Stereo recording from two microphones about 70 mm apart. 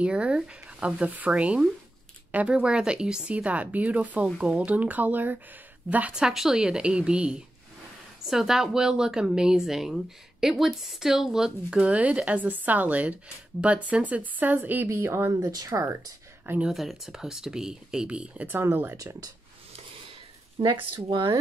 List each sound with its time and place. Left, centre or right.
0.0 s a woman's voice: centre
6.1 s a woman's voice: centre; by 14.9 s right
14.9 s speech: right
15.5 s speech: right
16.6 s a woman's voice: centre
18.5 s speech: right